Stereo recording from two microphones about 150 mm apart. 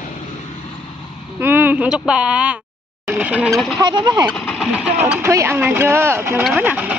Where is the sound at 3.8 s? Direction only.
30° right (ahead or behind).